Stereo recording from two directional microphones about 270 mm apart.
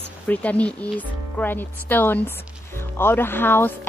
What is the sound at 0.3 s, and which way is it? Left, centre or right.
Speech, centre.